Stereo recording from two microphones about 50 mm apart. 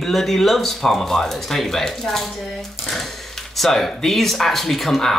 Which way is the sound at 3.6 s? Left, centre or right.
Centre.